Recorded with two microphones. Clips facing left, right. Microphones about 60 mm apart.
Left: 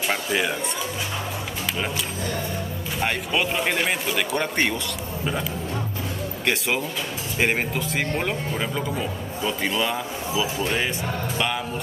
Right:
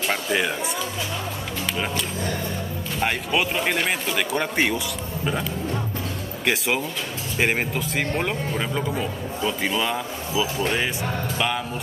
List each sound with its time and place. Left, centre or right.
0.0 s speech: centre
3.0 s speech: centre
6.4 s speech: centre